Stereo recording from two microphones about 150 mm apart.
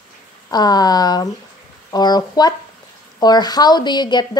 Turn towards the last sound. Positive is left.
turn(degrees=30)  # may be behind; listen again after turning